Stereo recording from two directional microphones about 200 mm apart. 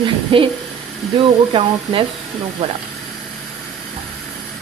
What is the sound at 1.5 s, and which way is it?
Speech, 20° right (ahead or behind).